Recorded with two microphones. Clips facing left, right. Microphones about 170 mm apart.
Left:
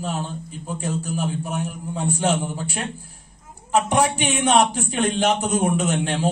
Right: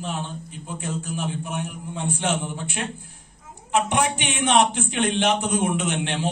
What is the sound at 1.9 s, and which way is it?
A man's voice, 35° left (ahead or behind).